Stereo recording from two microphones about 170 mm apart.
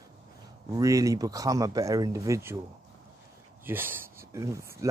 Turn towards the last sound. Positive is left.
turn(degrees=-15)  # may be behind; listen again after turning